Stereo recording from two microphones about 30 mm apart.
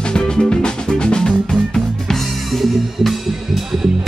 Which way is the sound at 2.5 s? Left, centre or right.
Centre.